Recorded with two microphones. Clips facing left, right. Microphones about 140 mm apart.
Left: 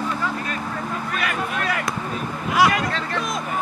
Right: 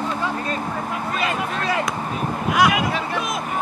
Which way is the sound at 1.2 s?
25° right (ahead or behind).